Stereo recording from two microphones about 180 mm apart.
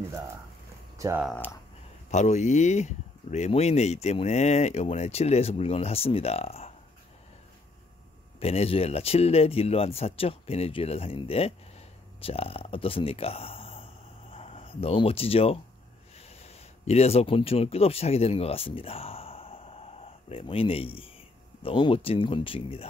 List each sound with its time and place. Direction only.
0.9 s speech: 15° right (ahead or behind)
2.0 s speech: 40° left (ahead or behind)
8.4 s speech: 35° left (ahead or behind)